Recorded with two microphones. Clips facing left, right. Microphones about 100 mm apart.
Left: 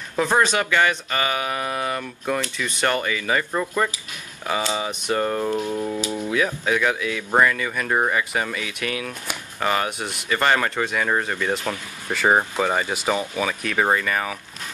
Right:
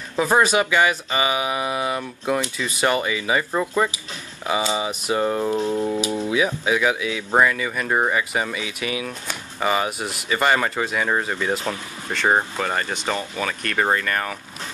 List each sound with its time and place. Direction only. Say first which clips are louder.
0.2 s speech: right 2 dB; 10° right (ahead or behind)
5.6 s music: right 3 dB; 25° right (ahead or behind)
5.9 s speech: right 3 dB; 10° right (ahead or behind)